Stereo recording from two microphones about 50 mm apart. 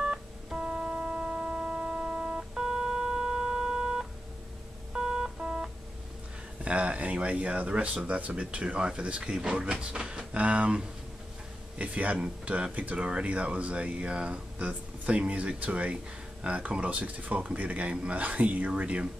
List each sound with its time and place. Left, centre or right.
0.0 s music: centre
0.7 s a sound: right
4.9 s music: centre
6.6 s speech: right
11.8 s speech: right